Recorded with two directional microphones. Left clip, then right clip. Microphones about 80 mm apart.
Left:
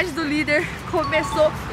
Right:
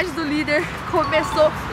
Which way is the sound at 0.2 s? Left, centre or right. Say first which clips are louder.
Even; centre.